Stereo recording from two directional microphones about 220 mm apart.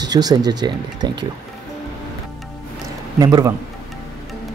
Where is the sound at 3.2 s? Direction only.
15° right (ahead or behind).